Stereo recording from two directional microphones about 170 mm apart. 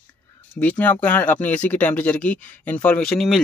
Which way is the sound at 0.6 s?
10° left (ahead or behind).